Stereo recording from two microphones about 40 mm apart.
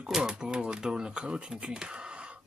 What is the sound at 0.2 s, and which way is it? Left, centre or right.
Speech, centre.